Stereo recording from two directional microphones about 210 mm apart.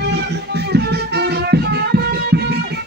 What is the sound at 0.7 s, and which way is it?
Music, 50° right (ahead or behind).